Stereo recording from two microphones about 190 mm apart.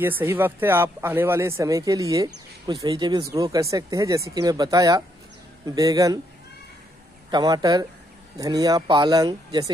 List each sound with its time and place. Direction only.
0.0 s speech: 10° right (ahead or behind)
7.2 s speech: 20° right (ahead or behind)